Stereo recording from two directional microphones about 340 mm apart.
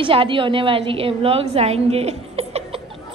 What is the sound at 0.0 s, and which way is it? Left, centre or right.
A woman's voice, centre.